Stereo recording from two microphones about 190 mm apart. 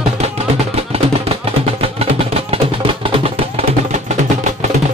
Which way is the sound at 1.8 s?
30° right (ahead or behind).